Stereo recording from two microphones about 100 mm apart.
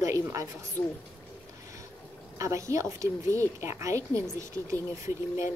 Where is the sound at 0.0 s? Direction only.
30° right (ahead or behind).